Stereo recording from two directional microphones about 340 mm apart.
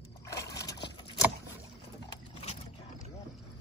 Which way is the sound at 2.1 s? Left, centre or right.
Centre.